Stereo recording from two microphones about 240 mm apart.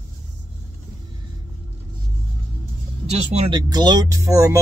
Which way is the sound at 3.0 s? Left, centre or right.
Right.